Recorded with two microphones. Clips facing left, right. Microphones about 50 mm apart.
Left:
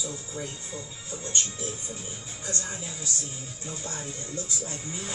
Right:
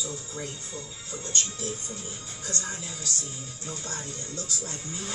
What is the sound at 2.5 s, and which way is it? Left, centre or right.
Speech, left.